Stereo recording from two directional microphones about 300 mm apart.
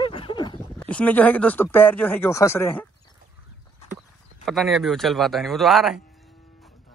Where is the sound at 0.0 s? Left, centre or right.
Centre.